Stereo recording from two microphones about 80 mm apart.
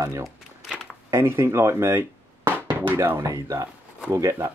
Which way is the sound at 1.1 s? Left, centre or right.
Right.